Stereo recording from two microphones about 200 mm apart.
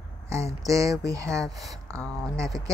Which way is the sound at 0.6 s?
15° right (ahead or behind).